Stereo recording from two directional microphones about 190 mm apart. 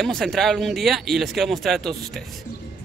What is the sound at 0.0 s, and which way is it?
Speech, centre (ahead or behind).